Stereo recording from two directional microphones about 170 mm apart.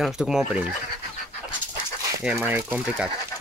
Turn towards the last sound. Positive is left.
turn(degrees=-10)  # may be behind; listen again after turning